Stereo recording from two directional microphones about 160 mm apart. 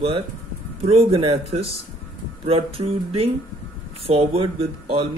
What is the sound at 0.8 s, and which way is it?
Speech, 35° right (ahead or behind).